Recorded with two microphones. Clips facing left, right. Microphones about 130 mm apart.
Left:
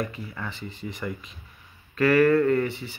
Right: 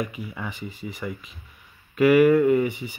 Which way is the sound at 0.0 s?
10° right (ahead or behind).